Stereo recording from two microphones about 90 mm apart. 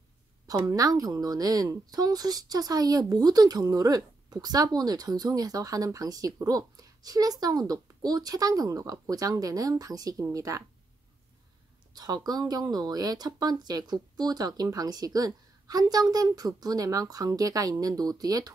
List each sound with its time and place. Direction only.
0.5 s a woman's voice: 40° right (ahead or behind)
11.9 s a woman's voice: 50° right (ahead or behind)